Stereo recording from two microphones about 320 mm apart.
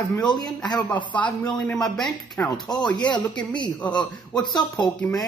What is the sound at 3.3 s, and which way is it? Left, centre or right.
A man's voice, centre.